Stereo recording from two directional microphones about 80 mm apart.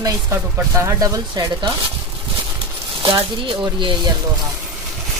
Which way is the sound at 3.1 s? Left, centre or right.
Right.